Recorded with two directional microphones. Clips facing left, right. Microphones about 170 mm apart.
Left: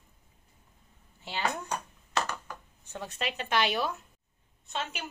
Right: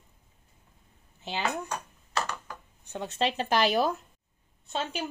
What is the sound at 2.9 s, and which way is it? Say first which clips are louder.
Speech: right 6 dB; 25° right (ahead or behind).